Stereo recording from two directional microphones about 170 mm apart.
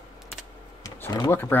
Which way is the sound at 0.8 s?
20° left (ahead or behind).